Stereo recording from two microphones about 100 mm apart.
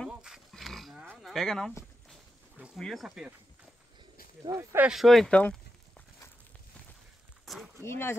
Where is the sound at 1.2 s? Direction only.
Centre (ahead or behind).